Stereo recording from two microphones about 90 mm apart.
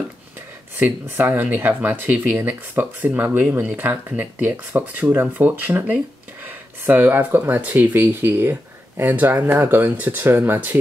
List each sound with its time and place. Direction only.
0.7 s speech: 20° right (ahead or behind)